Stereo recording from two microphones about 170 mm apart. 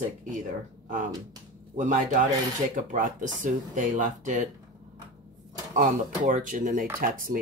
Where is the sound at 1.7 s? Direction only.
50° right (ahead or behind).